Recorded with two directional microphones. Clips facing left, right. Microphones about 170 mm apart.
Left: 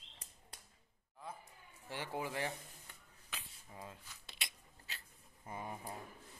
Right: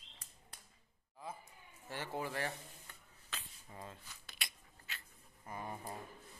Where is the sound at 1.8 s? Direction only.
15° left (ahead or behind).